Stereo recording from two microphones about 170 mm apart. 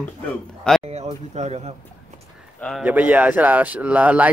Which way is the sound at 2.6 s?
5° left (ahead or behind).